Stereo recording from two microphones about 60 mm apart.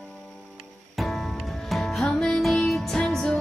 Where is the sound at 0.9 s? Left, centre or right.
Centre.